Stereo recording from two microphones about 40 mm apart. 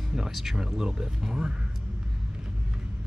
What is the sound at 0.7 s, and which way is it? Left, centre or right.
Speech, centre.